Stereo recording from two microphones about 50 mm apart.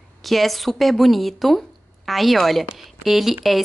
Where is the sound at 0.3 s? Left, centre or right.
Centre.